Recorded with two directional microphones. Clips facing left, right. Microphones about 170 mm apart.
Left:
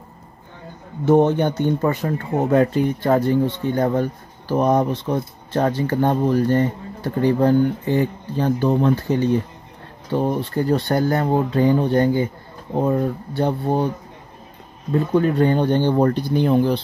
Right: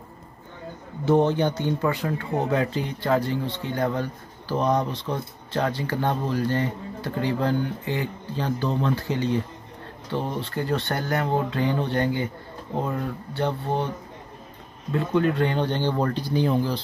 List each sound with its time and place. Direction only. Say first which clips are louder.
1.0 s speech: left 5 dB; 50° left (ahead or behind)
10.4 s speech: left 6 dB; 40° left (ahead or behind)
14.9 s speech: left 4 dB; 40° left (ahead or behind); by 16.8 s 60° left (ahead or behind)